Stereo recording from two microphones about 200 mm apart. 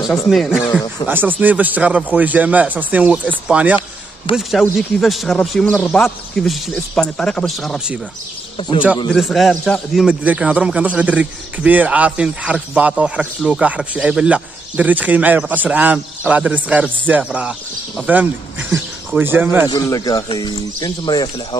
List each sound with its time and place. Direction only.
0.1 s speech: centre (ahead or behind)
1.0 s a man's voice: 10° right (ahead or behind)
8.5 s speech: 25° left (ahead or behind)
9.1 s a man's voice: centre (ahead or behind)
19.7 s speech: 20° left (ahead or behind)